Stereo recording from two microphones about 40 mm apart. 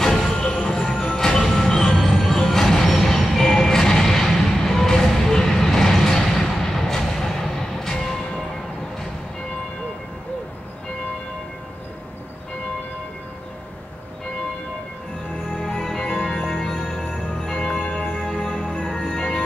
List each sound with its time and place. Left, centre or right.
0.0 s music: centre
15.5 s music: left
17.3 s jingle bell: centre
18.4 s music: centre